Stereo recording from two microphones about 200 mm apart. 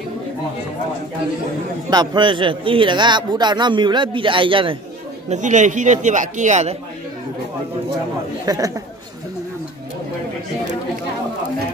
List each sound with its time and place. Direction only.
1.9 s a man's voice: 20° right (ahead or behind)
5.3 s a man's voice: 35° right (ahead or behind)
8.5 s a man's voice: 20° right (ahead or behind)